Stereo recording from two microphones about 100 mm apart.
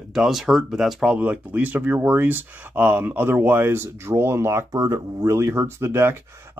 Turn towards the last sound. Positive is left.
turn(degrees=-25)  # may be behind; listen again after turning